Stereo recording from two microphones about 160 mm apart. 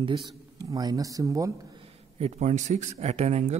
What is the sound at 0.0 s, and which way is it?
Speech, 25° right (ahead or behind).